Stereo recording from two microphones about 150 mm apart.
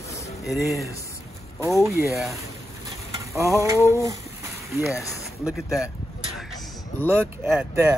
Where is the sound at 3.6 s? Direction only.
20° right (ahead or behind).